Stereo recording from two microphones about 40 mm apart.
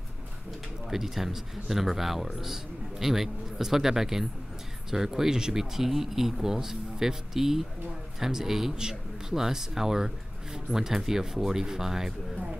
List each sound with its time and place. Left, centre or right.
0.8 s speech: centre